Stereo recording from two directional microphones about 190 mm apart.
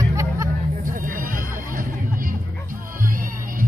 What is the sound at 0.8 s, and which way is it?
Neigh, 45° right (ahead or behind).